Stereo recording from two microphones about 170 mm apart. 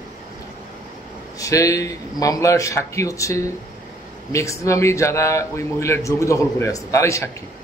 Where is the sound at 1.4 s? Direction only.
20° left (ahead or behind).